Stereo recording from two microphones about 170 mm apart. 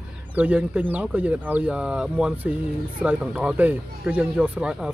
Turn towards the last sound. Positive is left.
turn(degrees=-5)  # may be behind; listen again after turning